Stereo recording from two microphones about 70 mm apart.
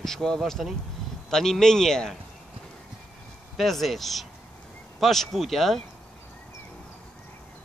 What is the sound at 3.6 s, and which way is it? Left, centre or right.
Speech, centre.